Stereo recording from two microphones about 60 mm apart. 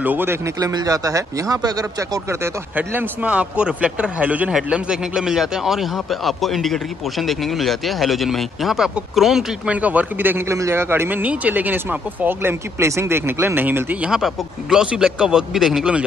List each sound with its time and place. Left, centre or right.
0.0 s speech: right
0.6 s speech: right
2.7 s speech: right
3.3 s speech: right
9.7 s speech: right
10.5 s speech: right
12.8 s speech: right
13.6 s speech: right
14.0 s a man's voice: centre